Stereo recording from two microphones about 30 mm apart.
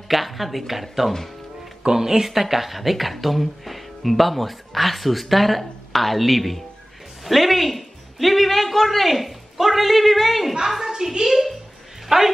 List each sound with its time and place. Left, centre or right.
0.1 s speech: centre
1.9 s a woman's voice: centre
10.9 s a woman's voice: right
11.2 s speech: centre
12.1 s a man's voice: centre